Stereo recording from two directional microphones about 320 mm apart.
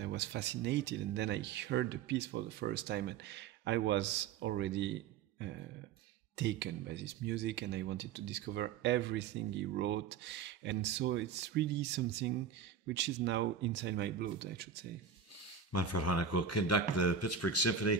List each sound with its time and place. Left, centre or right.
0.0 s speech: right
6.3 s speech: right
15.7 s speech: left